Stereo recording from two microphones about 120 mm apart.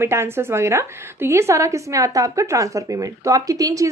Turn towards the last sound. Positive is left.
turn(degrees=-30)  # may be behind; listen again after turning